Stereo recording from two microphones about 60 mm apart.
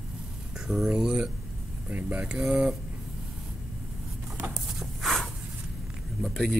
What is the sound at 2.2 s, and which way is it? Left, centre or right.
Speech, centre.